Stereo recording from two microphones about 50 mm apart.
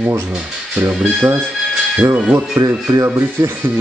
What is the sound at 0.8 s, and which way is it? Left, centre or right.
Speech, right.